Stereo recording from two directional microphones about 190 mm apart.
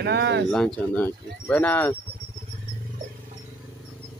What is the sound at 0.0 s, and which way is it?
Speech, 60° right (ahead or behind).